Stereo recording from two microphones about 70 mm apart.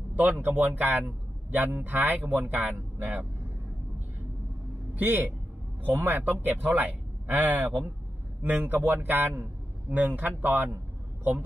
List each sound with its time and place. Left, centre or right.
0.1 s a man's voice: right
4.9 s a man's voice: right